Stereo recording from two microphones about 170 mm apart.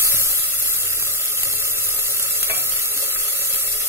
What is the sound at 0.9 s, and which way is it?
Stir, 15° right (ahead or behind).